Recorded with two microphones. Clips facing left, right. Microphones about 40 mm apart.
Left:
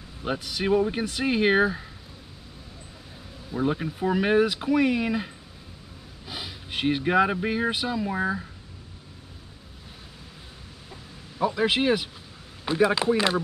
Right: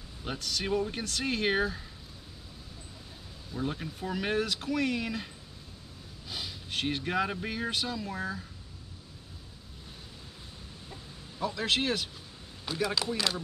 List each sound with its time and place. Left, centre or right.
0.2 s speech: centre
3.5 s speech: left
11.3 s speech: centre